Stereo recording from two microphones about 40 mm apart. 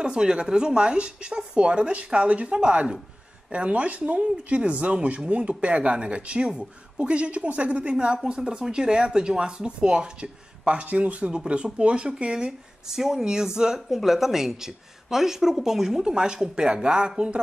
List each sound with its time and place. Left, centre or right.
0.0 s speech: right
8.2 s speech: centre
12.9 s speech: centre